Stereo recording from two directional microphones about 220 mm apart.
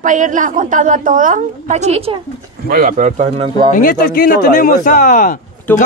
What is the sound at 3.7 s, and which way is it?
Speech, 40° left (ahead or behind).